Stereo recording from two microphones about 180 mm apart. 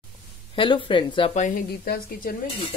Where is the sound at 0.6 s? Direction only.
25° left (ahead or behind).